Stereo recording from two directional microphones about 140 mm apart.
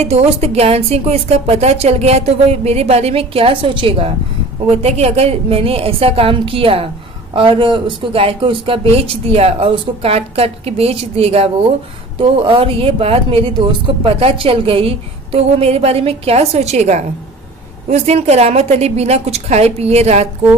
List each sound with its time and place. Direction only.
0.0 s speech: 45° right (ahead or behind)